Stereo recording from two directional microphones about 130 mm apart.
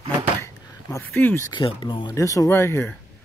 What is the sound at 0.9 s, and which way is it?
Speech, 15° left (ahead or behind).